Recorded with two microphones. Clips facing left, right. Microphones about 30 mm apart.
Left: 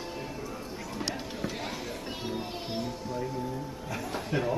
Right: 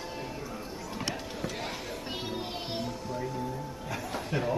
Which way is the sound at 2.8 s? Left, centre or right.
Centre.